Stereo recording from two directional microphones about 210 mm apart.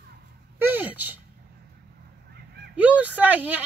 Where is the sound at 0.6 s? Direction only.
10° right (ahead or behind).